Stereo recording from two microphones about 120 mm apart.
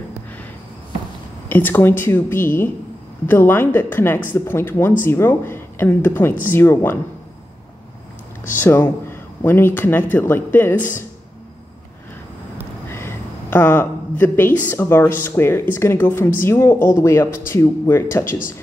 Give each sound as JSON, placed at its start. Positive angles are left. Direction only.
{"t": 1.5, "sound": "speech", "side_deg": 15}
{"t": 8.5, "sound": "speech", "side_deg": 15}
{"t": 12.8, "sound": "a sound", "side_deg": 20}
{"t": 15.2, "sound": "speech", "side_deg": 20}